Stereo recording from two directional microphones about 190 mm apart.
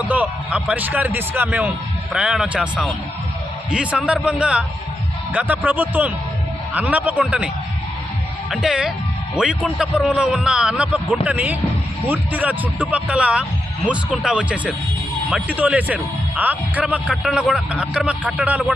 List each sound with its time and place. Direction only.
0.0 s a man's voice: 10° right (ahead or behind)